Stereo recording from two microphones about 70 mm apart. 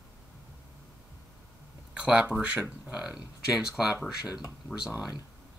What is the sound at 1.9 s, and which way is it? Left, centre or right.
Speech, centre.